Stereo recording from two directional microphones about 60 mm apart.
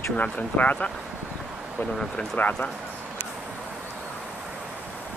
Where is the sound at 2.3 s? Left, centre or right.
Left.